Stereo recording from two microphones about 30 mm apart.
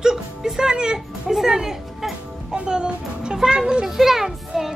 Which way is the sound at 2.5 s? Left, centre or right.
Right.